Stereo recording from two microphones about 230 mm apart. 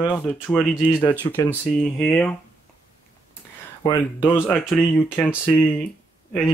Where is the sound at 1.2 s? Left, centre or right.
Centre.